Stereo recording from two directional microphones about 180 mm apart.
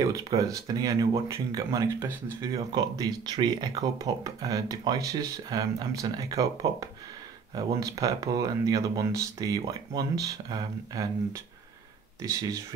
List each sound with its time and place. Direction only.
0.0 s speech: 20° right (ahead or behind)
12.2 s speech: 20° right (ahead or behind)